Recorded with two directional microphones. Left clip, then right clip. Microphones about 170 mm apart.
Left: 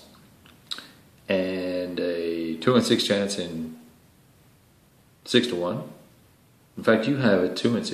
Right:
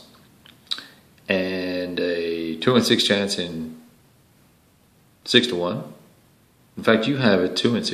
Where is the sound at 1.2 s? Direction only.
10° right (ahead or behind).